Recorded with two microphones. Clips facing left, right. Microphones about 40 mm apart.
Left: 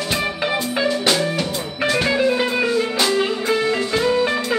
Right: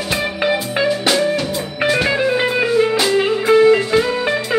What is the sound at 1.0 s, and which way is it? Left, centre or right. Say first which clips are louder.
Music: right 3 dB; centre.